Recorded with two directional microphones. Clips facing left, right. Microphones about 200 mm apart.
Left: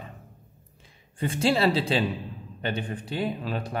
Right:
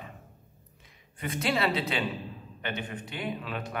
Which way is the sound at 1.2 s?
30° left (ahead or behind).